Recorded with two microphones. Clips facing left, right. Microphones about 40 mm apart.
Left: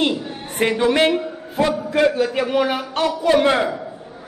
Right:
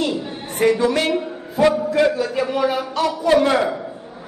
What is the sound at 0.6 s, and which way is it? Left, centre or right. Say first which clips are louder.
A man's voice: even; left.